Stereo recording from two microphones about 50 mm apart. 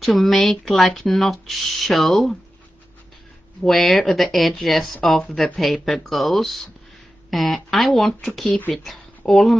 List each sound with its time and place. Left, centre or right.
0.0 s speech: centre
3.6 s speech: centre
8.5 s speech: left
8.7 s speech: centre